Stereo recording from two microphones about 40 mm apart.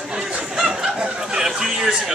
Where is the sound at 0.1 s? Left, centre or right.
Centre.